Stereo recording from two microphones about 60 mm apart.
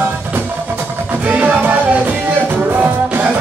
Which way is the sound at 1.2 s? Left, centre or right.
Right.